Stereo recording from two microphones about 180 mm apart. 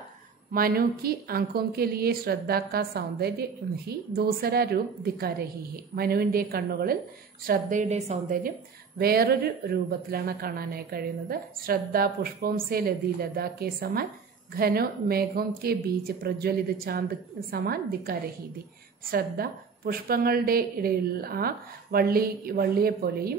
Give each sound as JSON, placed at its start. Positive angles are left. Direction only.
{"t": 0.5, "sound": "a woman's voice", "side_deg": -55}
{"t": 7.8, "sound": "a woman's voice", "side_deg": -40}